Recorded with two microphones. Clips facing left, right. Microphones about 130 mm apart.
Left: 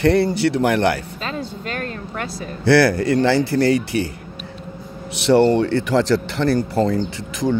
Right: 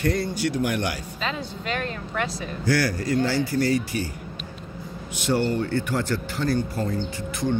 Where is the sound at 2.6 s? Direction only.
75° left (ahead or behind).